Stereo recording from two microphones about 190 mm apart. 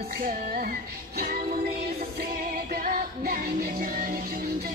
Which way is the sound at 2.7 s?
50° right (ahead or behind).